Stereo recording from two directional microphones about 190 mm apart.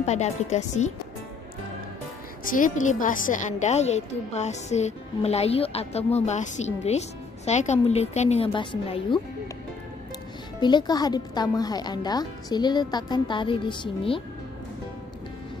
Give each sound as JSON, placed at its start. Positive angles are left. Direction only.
{"t": 0.0, "sound": "a woman's voice", "side_deg": 35}
{"t": 2.4, "sound": "a woman's voice", "side_deg": 45}
{"t": 10.6, "sound": "speech", "side_deg": 25}